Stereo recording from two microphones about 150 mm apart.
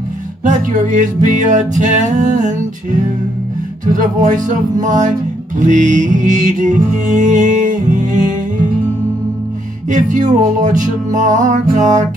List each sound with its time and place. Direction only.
0.4 s music: 60° right (ahead or behind)
9.8 s music: 60° right (ahead or behind)